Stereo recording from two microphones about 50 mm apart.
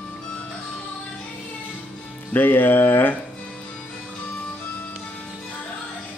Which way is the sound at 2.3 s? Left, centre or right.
Left.